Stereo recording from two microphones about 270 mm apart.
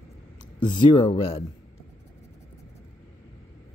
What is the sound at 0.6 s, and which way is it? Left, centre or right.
Speech, centre.